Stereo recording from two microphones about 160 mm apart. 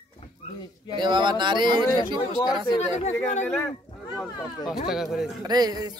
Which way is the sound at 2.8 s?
45° left (ahead or behind).